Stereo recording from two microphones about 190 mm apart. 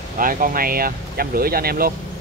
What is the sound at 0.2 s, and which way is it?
Speech, 45° right (ahead or behind).